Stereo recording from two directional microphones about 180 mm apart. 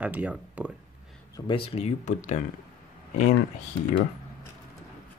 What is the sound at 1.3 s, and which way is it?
Speech, 30° left (ahead or behind).